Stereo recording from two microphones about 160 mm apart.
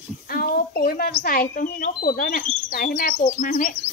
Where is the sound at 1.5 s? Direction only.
60° left (ahead or behind).